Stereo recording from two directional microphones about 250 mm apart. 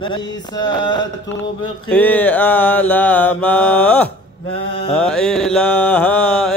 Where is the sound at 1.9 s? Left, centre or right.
Centre.